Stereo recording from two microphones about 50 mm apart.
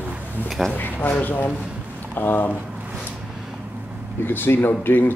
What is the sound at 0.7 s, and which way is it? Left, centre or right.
Speech, left.